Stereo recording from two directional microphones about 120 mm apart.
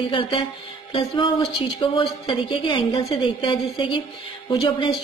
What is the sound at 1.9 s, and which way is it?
Speech, 45° left (ahead or behind).